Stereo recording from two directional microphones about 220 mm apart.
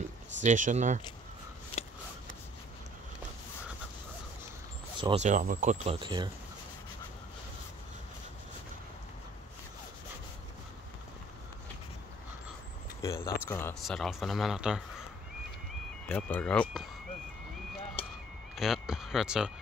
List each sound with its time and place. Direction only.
0.4 s speech: 35° right (ahead or behind)
5.0 s speech: 30° right (ahead or behind)
13.0 s speech: 15° left (ahead or behind)
13.8 s a man's voice: centre (ahead or behind)
16.1 s a man's voice: 5° left (ahead or behind)
18.0 s a sound: 25° left (ahead or behind)
18.6 s a man's voice: centre (ahead or behind)